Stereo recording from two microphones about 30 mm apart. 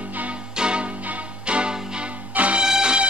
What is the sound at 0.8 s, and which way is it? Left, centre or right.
Music, right.